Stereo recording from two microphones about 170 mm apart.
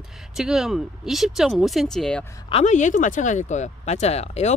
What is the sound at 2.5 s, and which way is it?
Speech, 40° left (ahead or behind).